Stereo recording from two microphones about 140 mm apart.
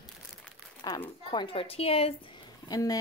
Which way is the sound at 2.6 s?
25° left (ahead or behind).